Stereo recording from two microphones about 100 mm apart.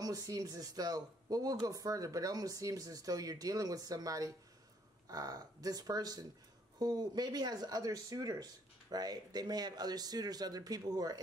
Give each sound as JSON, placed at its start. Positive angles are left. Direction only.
{"t": 0.0, "sound": "speech", "side_deg": -40}